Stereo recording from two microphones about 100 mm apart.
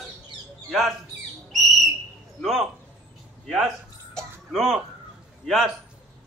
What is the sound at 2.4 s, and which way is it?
Speech, centre (ahead or behind).